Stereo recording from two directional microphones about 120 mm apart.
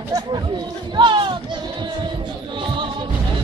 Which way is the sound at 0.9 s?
40° right (ahead or behind).